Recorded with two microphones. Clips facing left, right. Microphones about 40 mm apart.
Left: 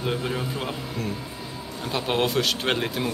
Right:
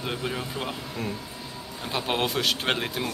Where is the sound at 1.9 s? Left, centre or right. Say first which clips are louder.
Left 3 dB; centre.